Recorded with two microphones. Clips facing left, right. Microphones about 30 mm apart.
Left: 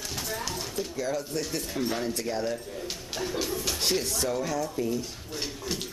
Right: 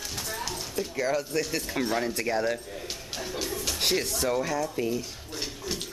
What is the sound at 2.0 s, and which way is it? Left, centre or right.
Speech, right.